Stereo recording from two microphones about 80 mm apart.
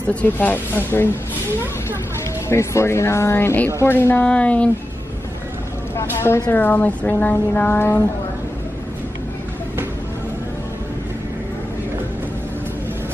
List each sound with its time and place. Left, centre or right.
0.1 s speech: centre
2.5 s speech: left
4.3 s speech: centre
5.9 s speech: left
6.5 s speech: left